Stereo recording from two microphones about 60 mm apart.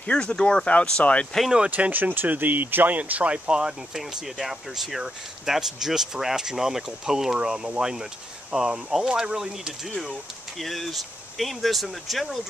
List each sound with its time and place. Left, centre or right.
0.0 s speech: centre
1.7 s speech: right; by 9.9 s centre
10.6 s speech: centre